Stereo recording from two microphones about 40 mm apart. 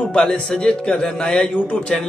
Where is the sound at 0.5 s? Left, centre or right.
Left.